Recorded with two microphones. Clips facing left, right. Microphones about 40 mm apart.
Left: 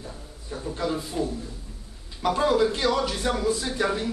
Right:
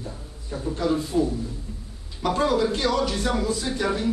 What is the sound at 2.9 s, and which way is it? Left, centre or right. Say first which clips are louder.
Speech: right 2 dB; centre.